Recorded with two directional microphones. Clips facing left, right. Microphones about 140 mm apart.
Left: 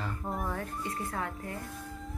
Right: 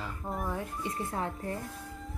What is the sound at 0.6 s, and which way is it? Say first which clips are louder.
A woman's voice: right 1 dB; 20° right (ahead or behind).